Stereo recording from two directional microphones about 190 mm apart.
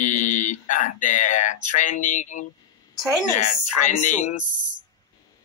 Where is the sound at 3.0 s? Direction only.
Centre (ahead or behind).